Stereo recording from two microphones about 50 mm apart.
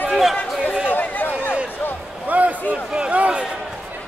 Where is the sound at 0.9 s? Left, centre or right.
Left.